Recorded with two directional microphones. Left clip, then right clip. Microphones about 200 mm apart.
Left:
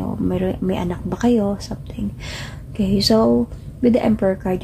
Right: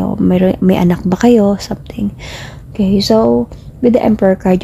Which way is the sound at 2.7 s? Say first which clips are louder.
Right 5 dB; 30° right (ahead or behind).